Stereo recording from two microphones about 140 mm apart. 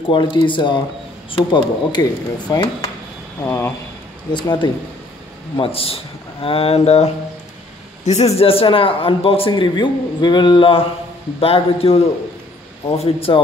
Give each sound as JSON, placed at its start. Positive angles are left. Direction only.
{"t": 0.1, "sound": "speech", "side_deg": 35}
{"t": 4.3, "sound": "a man's voice", "side_deg": 35}